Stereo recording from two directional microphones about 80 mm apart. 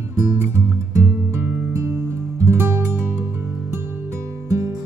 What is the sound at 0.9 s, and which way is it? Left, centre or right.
Music, right.